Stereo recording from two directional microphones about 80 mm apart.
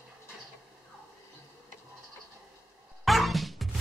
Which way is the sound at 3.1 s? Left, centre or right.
Centre.